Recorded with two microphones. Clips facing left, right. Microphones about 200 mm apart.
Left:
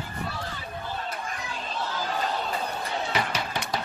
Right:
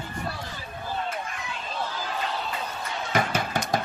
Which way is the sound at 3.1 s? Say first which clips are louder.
Right 7 dB; 50° right (ahead or behind).